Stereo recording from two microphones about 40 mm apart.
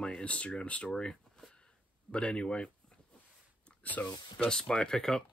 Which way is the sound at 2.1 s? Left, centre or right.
Left.